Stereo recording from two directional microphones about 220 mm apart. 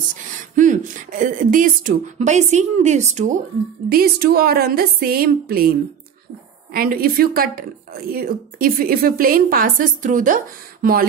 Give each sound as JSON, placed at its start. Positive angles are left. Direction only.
{"t": 0.1, "sound": "a woman's voice", "side_deg": -35}
{"t": 3.9, "sound": "a woman's voice", "side_deg": -45}